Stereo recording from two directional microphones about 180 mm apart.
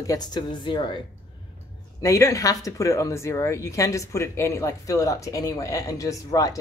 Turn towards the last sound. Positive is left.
turn(degrees=20)  # may be behind; listen again after turning